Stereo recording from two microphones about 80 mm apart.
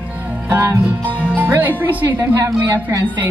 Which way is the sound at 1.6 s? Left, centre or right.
Right.